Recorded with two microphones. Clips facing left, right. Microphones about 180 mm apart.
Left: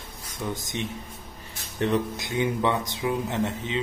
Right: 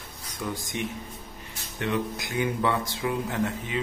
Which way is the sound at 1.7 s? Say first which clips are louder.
Left 3 dB; 35° left (ahead or behind).